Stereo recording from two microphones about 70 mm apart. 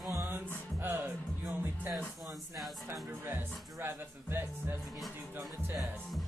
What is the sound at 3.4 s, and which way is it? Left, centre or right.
Speech, right.